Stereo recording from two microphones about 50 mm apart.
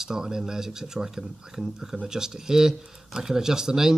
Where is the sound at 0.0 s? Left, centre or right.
Centre.